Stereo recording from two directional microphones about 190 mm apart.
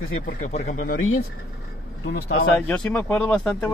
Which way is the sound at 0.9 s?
90° left.